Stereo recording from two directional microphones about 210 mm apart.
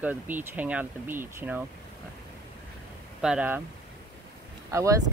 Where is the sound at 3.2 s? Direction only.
5° right (ahead or behind).